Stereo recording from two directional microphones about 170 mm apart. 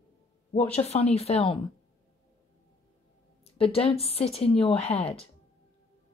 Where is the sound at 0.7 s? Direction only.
35° left (ahead or behind).